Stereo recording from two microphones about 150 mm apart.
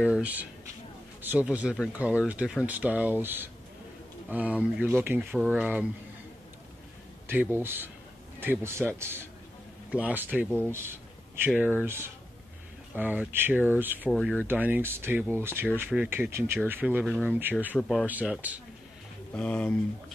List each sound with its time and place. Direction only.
0.0 s speech: 5° right (ahead or behind)
7.2 s speech: 15° right (ahead or behind)
14.1 s speech: 10° left (ahead or behind)
14.5 s speech: 15° right (ahead or behind)
17.7 s speech: centre (ahead or behind)
18.0 s speech: 10° right (ahead or behind)
19.3 s speech: 5° left (ahead or behind)